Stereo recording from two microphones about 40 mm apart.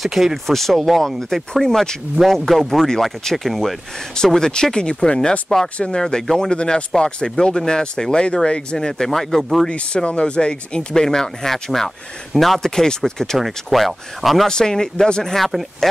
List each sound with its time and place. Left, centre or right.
0.0 s speech: centre
0.5 s speech: centre; by 5.3 s left
5.5 s speech: centre
9.7 s speech: left; by 13.4 s centre
13.4 s speech: centre
14.5 s speech: centre
15.3 s speech: centre